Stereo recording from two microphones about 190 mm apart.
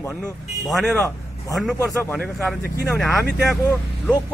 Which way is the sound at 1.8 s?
15° left (ahead or behind).